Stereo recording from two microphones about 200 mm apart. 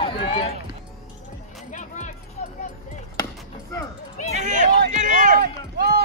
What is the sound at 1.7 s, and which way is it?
Music, 40° left (ahead or behind).